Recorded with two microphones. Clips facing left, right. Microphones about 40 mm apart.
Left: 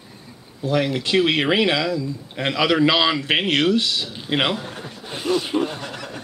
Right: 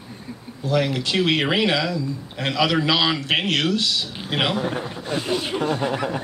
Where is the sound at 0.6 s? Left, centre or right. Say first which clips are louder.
Left 1 dB; centre.